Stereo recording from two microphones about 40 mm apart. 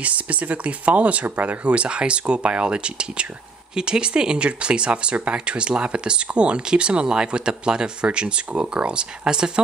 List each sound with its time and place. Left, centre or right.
0.0 s speech: right